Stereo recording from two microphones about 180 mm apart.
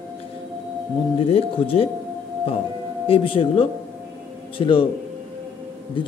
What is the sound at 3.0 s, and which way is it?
Speech, 30° left (ahead or behind).